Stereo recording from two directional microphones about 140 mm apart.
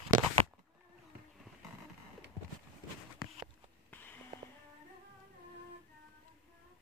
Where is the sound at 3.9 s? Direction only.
15° left (ahead or behind).